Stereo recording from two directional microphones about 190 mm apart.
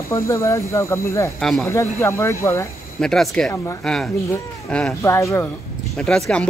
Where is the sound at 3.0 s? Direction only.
Centre (ahead or behind).